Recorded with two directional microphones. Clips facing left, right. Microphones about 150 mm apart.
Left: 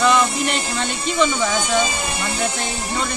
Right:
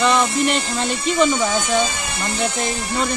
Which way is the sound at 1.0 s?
5° right (ahead or behind).